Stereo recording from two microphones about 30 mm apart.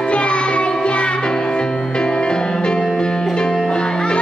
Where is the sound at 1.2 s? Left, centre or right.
Left.